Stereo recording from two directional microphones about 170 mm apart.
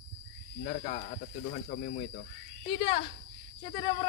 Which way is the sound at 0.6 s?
50° left (ahead or behind).